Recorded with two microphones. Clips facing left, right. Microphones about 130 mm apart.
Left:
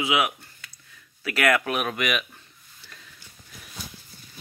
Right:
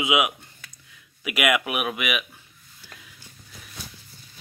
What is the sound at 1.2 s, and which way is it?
Speech, 15° right (ahead or behind).